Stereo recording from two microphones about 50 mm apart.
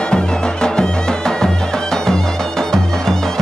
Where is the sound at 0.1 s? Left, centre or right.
Centre.